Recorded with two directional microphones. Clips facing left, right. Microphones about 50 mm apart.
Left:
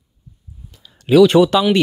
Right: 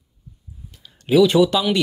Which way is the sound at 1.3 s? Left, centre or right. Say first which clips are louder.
Left 4 dB; left.